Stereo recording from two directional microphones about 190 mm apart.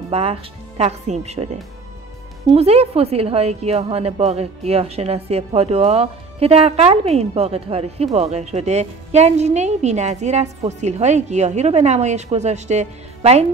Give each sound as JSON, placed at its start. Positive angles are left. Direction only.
{"t": 0.1, "sound": "a woman's voice", "side_deg": -30}